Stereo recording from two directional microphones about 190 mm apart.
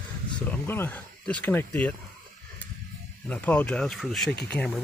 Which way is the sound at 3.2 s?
5° left (ahead or behind).